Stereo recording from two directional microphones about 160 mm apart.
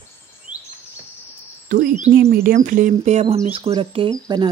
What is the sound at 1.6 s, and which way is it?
Speech, 55° right (ahead or behind).